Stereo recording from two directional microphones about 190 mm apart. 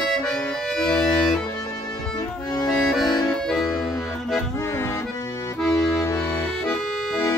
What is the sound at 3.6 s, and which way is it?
Music, 20° left (ahead or behind).